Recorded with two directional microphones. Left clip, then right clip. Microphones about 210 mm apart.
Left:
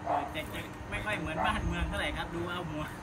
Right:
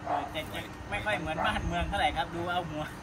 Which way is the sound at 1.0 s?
5° left (ahead or behind).